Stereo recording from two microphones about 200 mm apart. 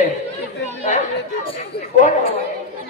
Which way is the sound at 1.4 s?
35° left (ahead or behind).